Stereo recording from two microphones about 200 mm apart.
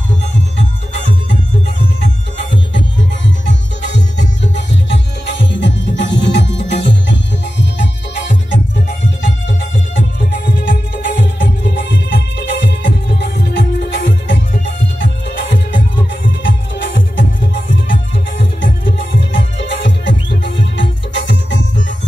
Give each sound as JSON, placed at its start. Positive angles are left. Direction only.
{"t": 3.4, "sound": "music", "side_deg": 60}
{"t": 10.3, "sound": "music", "side_deg": 60}
{"t": 19.1, "sound": "music", "side_deg": 65}